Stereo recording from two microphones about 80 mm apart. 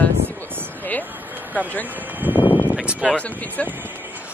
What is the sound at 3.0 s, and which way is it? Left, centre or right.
Speech, centre.